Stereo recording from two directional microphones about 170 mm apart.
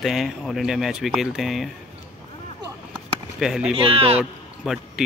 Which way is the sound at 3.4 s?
5° right (ahead or behind).